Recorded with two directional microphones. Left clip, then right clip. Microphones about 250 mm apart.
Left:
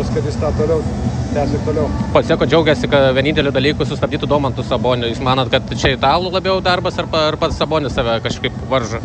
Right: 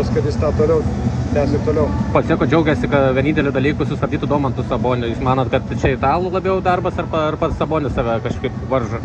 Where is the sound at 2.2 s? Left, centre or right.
Left.